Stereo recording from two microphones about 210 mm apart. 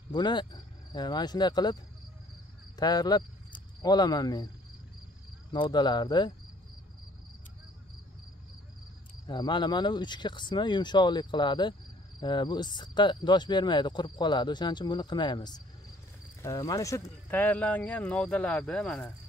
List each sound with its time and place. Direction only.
0.1 s speech: 20° left (ahead or behind)
2.8 s speech: 20° left (ahead or behind)
5.5 s speech: 20° left (ahead or behind)
9.2 s speech: 20° left (ahead or behind); by 19.1 s 5° left (ahead or behind)